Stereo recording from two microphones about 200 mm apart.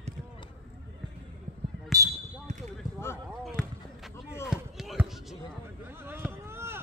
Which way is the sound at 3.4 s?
Centre (ahead or behind).